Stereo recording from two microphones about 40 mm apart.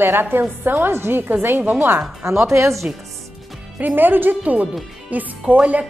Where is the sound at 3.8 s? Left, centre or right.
Right.